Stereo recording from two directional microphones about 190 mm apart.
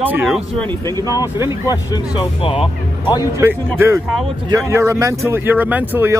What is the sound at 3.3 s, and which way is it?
Speech, 15° right (ahead or behind).